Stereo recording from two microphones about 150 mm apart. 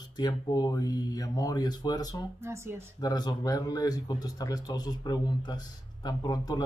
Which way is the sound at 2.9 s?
25° left (ahead or behind).